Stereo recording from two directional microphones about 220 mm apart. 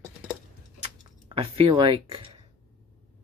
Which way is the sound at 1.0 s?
25° right (ahead or behind).